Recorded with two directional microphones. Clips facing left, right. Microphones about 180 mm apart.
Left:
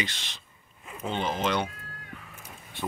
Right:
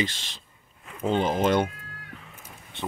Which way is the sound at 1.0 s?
45° right (ahead or behind).